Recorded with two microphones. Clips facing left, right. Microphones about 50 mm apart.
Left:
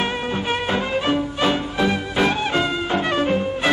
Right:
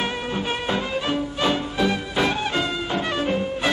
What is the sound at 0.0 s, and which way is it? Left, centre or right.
Music, centre.